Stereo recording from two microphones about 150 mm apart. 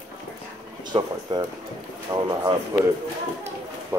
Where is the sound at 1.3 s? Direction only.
35° right (ahead or behind).